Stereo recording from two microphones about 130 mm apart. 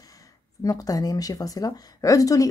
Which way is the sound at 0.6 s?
30° left (ahead or behind).